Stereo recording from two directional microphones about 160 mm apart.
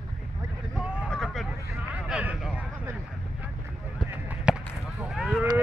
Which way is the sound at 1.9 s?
10° right (ahead or behind).